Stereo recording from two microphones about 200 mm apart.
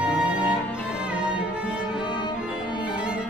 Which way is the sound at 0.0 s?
5° right (ahead or behind).